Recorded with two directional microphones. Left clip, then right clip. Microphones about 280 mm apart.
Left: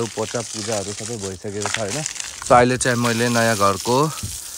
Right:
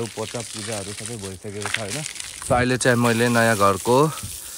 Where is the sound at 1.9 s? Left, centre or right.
Left.